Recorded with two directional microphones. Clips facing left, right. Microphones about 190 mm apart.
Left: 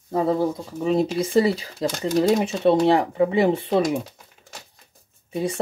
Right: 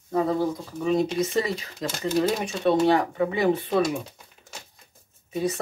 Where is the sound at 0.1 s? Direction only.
25° left (ahead or behind).